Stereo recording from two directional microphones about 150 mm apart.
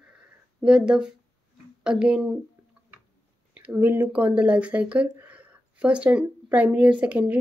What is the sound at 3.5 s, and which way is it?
Speech, 10° right (ahead or behind).